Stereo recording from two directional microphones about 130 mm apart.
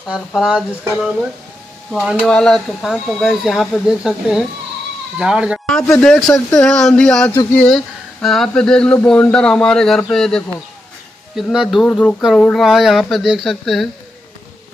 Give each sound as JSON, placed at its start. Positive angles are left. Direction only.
{"t": 0.1, "sound": "speech", "side_deg": -5}
{"t": 5.7, "sound": "speech", "side_deg": 5}
{"t": 11.8, "sound": "speech", "side_deg": 10}
{"t": 12.6, "sound": "speech", "side_deg": -5}